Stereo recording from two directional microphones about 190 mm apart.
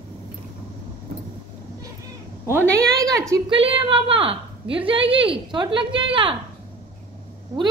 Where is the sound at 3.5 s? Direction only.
30° right (ahead or behind).